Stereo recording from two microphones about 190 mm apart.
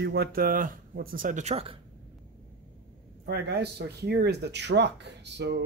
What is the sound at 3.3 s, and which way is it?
Speech, 60° right (ahead or behind).